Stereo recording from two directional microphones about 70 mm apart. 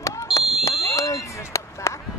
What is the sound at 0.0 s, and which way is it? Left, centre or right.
Smoke detector, left.